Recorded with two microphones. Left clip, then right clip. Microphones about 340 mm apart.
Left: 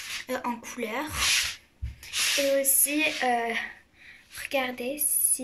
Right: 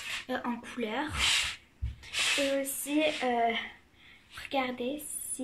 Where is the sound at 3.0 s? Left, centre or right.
Centre.